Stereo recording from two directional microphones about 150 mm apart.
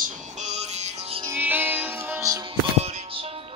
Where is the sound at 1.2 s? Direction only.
15° right (ahead or behind).